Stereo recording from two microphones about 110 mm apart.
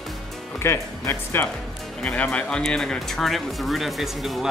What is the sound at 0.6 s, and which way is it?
Speech, 25° left (ahead or behind).